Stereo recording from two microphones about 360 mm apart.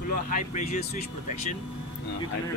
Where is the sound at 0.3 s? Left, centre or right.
Centre.